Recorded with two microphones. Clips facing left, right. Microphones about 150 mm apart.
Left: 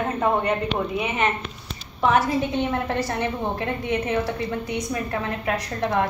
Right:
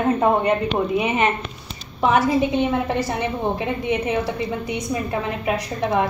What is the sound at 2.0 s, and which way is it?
A woman's voice, 15° right (ahead or behind).